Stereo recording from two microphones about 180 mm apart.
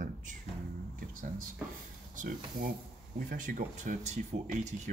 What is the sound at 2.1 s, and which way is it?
Speech, 45° right (ahead or behind).